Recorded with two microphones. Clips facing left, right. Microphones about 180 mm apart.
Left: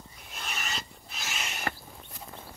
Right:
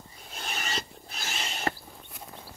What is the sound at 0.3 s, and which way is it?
Filing, 35° right (ahead or behind).